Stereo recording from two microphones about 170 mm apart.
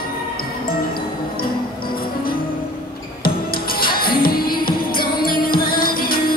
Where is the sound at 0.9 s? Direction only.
60° left (ahead or behind).